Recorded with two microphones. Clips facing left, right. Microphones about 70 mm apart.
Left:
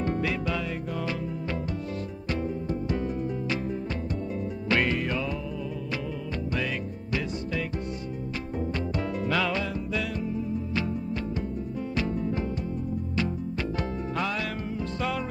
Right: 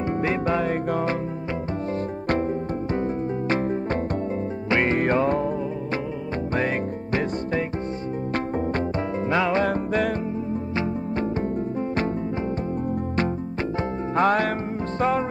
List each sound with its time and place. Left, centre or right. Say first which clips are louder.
0.0 s music: right 4 dB; right
2.2 s music: right 7 dB; right
2.9 s music: right 6 dB; right
4.6 s music: right 3 dB; right
4.9 s music: right 9 dB; right
9.3 s music: right 5 dB; right
9.6 s music: right 8 dB; right
14.1 s music: right 12 dB; right